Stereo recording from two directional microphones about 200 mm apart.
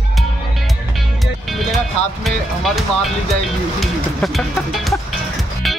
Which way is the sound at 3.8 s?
Centre (ahead or behind).